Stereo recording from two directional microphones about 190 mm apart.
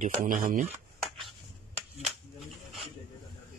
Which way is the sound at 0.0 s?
45° right (ahead or behind).